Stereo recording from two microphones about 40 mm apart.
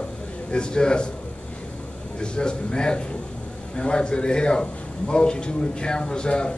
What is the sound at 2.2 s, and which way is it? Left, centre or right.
A man's voice, left.